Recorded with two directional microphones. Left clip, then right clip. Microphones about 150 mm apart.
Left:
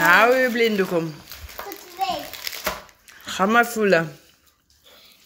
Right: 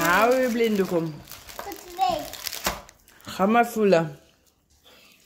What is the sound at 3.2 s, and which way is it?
Speech, 10° right (ahead or behind).